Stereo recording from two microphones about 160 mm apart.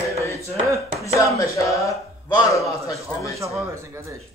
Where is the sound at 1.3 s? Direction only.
20° left (ahead or behind).